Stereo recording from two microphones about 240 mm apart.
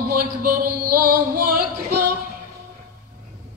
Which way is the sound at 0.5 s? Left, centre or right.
Right.